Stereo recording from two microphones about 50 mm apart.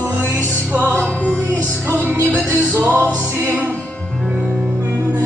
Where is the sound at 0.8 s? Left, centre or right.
Right.